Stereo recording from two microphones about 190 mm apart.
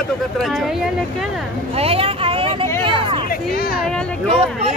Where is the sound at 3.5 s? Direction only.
50° left (ahead or behind).